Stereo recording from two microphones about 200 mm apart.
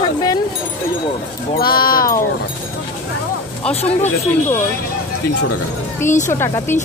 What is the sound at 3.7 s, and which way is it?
Speech, 30° left (ahead or behind).